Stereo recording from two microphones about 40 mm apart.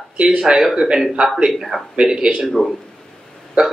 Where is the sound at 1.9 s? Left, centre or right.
Right.